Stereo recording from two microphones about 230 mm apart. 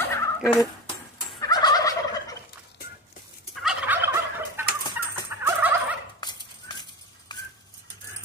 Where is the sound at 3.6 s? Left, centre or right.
Centre.